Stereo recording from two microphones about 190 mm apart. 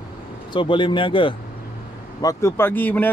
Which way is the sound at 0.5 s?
25° left (ahead or behind).